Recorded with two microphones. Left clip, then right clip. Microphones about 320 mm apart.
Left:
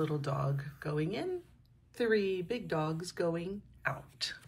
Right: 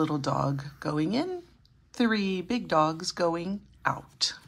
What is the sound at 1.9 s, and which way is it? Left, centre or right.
Speech, right.